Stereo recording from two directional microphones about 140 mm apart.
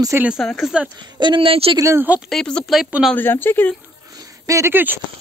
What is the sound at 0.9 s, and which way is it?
Speech, 35° right (ahead or behind).